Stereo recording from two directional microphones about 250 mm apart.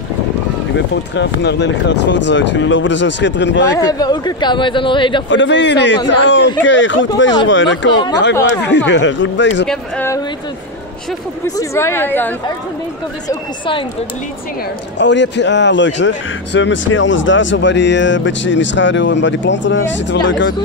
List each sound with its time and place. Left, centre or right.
0.7 s speech: left
3.7 s speech: centre
5.3 s speech: left
9.7 s a woman's voice: centre
11.4 s a woman's voice: centre
13.3 s speech: centre
15.0 s speech: left